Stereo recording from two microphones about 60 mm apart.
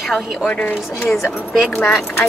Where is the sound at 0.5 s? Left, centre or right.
Left.